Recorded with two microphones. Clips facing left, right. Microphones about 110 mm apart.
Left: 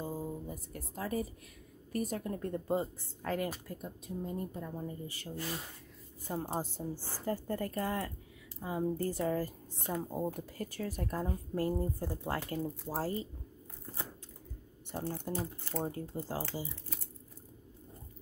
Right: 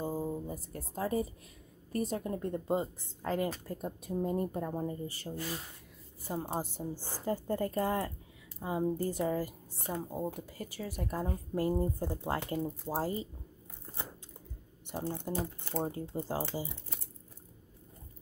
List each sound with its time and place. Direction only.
0.0 s music: 30° right (ahead or behind)
1.9 s speech: 25° right (ahead or behind)
3.6 s speech: 35° right (ahead or behind)
4.2 s a woman's voice: 60° right (ahead or behind)
4.7 s speech: 35° right (ahead or behind)
6.2 s a woman's voice: 10° right (ahead or behind)
10.0 s a woman's voice: centre (ahead or behind); by 13.3 s 15° right (ahead or behind)
14.9 s speech: 15° right (ahead or behind)